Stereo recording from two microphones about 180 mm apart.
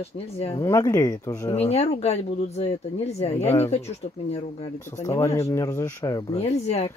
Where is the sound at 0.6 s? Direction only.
20° left (ahead or behind).